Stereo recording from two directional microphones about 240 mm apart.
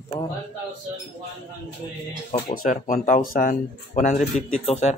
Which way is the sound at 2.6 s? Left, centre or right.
Left.